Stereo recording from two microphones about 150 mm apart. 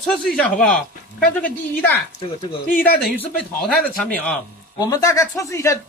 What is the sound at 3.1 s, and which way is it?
A woman's voice, 5° left (ahead or behind).